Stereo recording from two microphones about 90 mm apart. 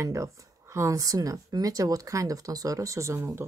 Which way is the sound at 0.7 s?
35° right (ahead or behind).